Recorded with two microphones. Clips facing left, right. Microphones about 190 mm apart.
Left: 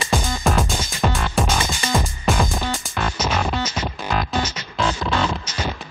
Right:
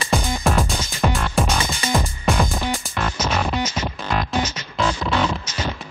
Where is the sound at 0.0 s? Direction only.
Centre (ahead or behind).